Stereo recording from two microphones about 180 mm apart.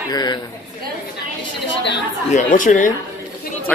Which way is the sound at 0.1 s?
20° left (ahead or behind).